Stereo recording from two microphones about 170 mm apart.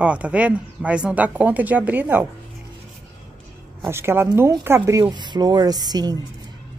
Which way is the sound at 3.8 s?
15° right (ahead or behind).